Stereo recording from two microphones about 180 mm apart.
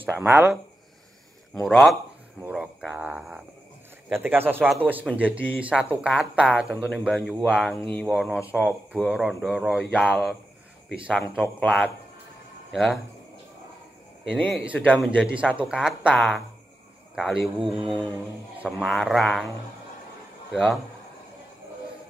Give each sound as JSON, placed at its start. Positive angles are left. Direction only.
{"t": 0.0, "sound": "speech", "side_deg": -10}
{"t": 1.6, "sound": "speech", "side_deg": 0}
{"t": 14.3, "sound": "speech", "side_deg": 5}
{"t": 14.6, "sound": "speech", "side_deg": -5}
{"t": 17.6, "sound": "speech", "side_deg": -30}
{"t": 18.6, "sound": "speech", "side_deg": 0}
{"t": 20.5, "sound": "speech", "side_deg": 0}